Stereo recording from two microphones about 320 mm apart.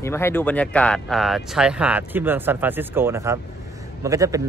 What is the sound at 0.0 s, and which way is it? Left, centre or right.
Speech, centre.